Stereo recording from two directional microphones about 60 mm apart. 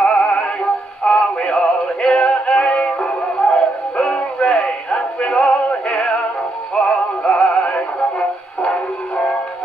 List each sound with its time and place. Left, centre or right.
0.0 s synthetic singing: centre
1.0 s music: centre
6.7 s synthetic singing: centre
8.6 s music: centre